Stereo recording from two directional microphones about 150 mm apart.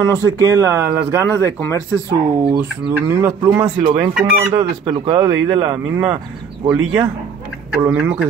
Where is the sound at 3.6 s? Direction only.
35° right (ahead or behind).